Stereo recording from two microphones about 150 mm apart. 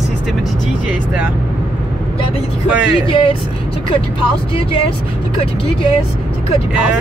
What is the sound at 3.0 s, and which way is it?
Speech, 35° left (ahead or behind).